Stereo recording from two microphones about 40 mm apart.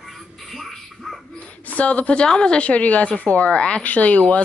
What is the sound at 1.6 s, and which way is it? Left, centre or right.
A woman's voice, left.